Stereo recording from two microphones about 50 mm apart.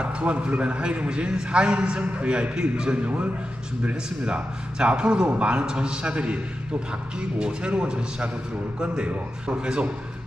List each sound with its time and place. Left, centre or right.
0.0 s a man's voice: right